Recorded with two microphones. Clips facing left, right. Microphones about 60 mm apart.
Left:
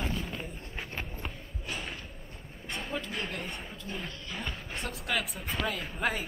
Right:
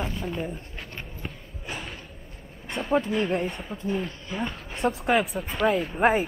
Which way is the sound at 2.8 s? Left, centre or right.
Right.